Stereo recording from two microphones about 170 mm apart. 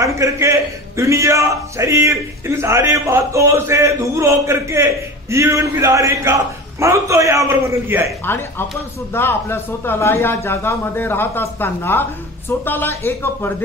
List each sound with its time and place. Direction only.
0.0 s a man's voice: 20° right (ahead or behind)
9.1 s speech: 15° left (ahead or behind)